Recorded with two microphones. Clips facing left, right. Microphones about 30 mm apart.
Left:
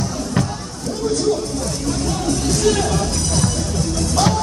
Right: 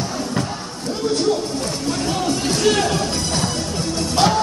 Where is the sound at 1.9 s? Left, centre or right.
Right.